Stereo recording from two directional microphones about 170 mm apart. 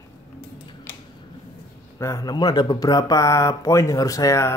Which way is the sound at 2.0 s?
20° left (ahead or behind).